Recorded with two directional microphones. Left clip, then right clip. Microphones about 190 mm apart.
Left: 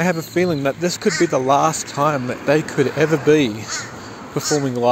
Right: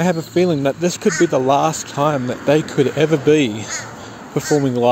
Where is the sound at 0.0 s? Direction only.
15° right (ahead or behind).